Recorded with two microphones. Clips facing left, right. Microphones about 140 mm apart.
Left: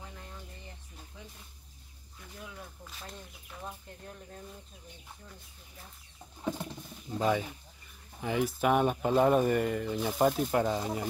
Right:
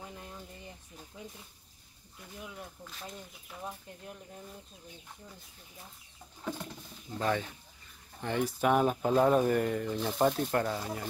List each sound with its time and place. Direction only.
2.8 s speech: centre (ahead or behind)
3.5 s speech: 10° right (ahead or behind)
7.2 s speech: 10° left (ahead or behind)
10.6 s speech: 15° left (ahead or behind)